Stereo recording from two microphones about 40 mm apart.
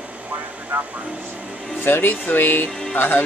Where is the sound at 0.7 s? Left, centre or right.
Right.